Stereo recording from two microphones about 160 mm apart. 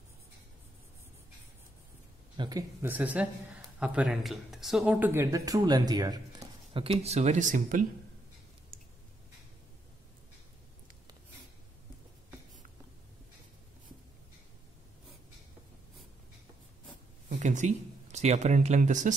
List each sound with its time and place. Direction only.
2.3 s speech: 30° right (ahead or behind)
2.8 s speech: 10° right (ahead or behind); by 7.8 s 55° right (ahead or behind)
17.3 s speech: 50° right (ahead or behind)